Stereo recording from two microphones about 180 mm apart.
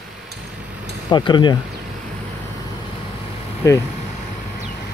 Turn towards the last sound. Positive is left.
turn(degrees=15)  # may be behind; listen again after turning